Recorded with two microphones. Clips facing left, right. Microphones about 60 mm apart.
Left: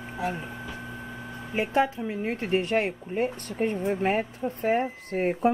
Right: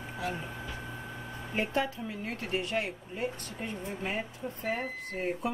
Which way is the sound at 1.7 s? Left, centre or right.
Left.